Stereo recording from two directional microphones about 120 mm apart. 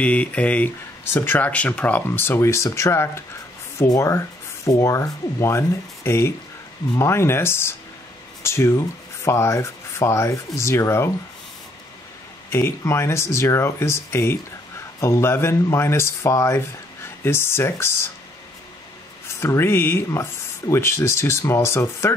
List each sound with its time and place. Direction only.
0.0 s speech: 10° left (ahead or behind)
12.4 s speech: 20° left (ahead or behind)
19.2 s speech: 20° left (ahead or behind)